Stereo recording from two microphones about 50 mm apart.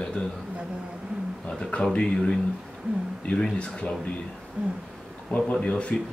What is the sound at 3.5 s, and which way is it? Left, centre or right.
Speech, left.